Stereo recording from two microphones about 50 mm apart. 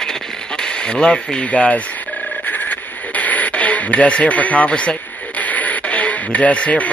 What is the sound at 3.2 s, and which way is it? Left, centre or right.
Radio, left.